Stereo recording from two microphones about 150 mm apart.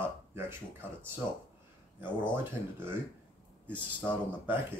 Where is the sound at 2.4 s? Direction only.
15° right (ahead or behind).